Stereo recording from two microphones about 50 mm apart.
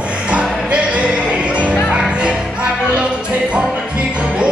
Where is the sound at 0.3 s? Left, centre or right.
Right.